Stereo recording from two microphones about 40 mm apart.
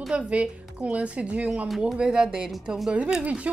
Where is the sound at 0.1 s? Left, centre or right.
Right.